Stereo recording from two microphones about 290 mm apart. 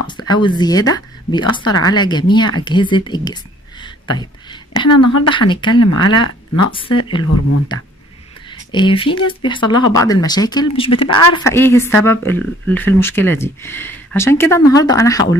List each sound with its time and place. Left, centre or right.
0.0 s speech: centre
3.8 s a sound: centre
4.8 s a woman's voice: left
5.5 s speech: centre
8.5 s speech: centre